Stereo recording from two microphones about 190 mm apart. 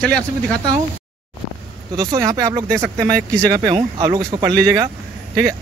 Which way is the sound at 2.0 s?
20° right (ahead or behind).